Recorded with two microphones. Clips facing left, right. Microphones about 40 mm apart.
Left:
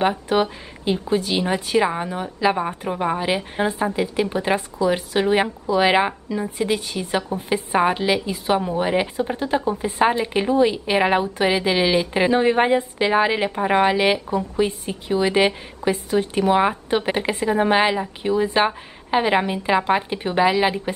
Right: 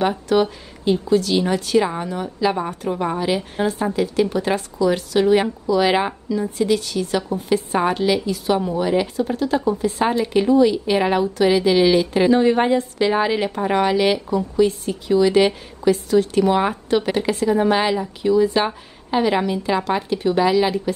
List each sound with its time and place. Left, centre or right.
0.0 s speech: centre